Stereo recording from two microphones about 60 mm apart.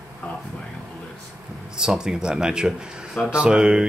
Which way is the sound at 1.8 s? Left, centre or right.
Centre.